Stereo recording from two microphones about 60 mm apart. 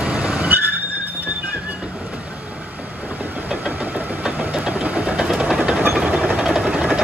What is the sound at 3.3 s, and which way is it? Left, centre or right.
Engine, right.